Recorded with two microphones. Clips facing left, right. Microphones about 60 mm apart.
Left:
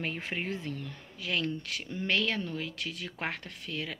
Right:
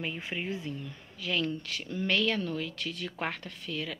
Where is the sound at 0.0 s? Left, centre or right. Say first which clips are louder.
Left 1 dB; left.